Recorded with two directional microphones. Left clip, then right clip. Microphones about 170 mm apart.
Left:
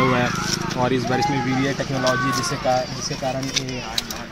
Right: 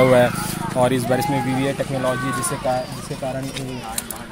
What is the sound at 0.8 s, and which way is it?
Speech, 85° right.